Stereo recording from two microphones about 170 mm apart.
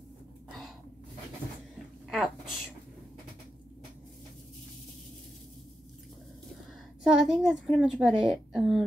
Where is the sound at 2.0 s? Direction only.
Centre (ahead or behind).